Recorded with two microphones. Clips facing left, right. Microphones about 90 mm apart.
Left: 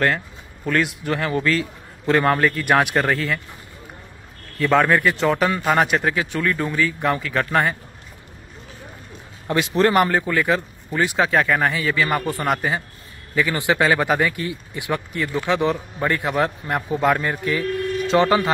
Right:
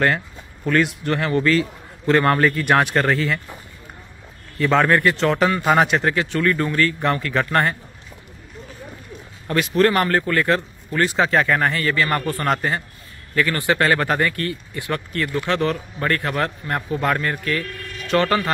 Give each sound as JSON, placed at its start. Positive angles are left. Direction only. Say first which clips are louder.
{"t": 0.7, "sound": "speech", "louder": "right 2 dB", "side_deg": 0}
{"t": 2.8, "sound": "speech", "louder": "even", "side_deg": 10}
{"t": 3.1, "sound": "speech", "louder": "right 1 dB", "side_deg": 0}
{"t": 4.6, "sound": "speech", "louder": "even", "side_deg": 0}
{"t": 9.5, "sound": "speech", "louder": "even", "side_deg": 20}